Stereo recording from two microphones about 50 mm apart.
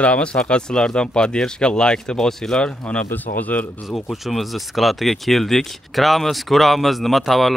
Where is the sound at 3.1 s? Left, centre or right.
Left.